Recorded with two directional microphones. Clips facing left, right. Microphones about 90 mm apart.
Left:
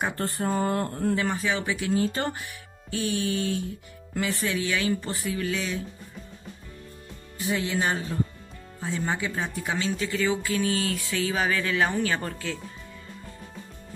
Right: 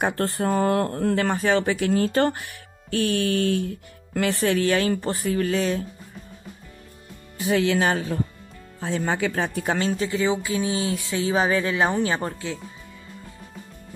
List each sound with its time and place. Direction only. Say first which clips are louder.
0.0 s speech: right 5 dB; 85° right; by 4.6 s 60° right (ahead or behind)
4.6 s speech: right 5 dB; 45° right (ahead or behind)
7.3 s speech: right 6 dB; 80° right; by 10.0 s 45° right (ahead or behind)
10.0 s a sound: right 3 dB; 25° right (ahead or behind)